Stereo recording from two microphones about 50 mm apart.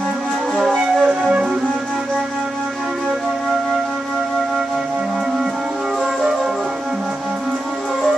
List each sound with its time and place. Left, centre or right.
1.0 s music: centre